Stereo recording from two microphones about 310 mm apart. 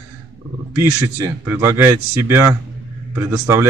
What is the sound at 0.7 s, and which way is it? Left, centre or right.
Speech, centre.